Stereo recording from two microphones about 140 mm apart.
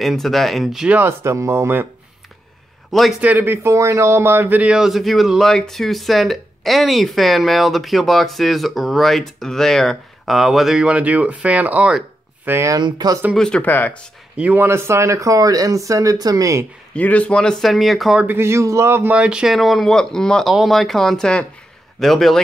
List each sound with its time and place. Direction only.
0.0 s speech: centre (ahead or behind)
0.9 s speech: 20° right (ahead or behind)
2.9 s a man's voice: centre (ahead or behind)
3.2 s speech: 10° right (ahead or behind)
12.4 s speech: 20° right (ahead or behind)
13.4 s speech: 10° left (ahead or behind)
14.3 s speech: 10° right (ahead or behind)
16.9 s speech: 10° left (ahead or behind)
18.2 s speech: 15° right (ahead or behind); by 22.4 s centre (ahead or behind)